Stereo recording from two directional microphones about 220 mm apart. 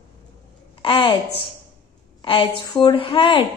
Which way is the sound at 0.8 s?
25° left (ahead or behind).